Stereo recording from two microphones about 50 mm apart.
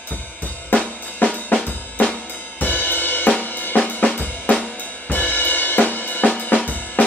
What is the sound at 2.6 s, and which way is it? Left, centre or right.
Cymbal, left.